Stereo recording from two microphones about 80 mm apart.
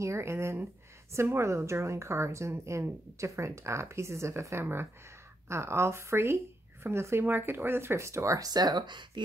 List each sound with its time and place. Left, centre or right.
0.0 s speech: right